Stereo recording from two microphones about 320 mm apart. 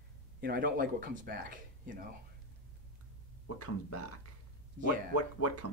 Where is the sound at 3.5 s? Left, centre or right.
Left.